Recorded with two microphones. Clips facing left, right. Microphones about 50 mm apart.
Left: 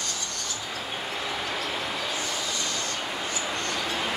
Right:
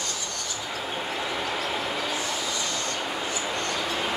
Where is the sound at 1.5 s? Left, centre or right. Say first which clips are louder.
Right 2 dB; centre.